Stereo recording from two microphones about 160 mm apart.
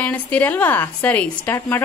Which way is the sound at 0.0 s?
10° left (ahead or behind).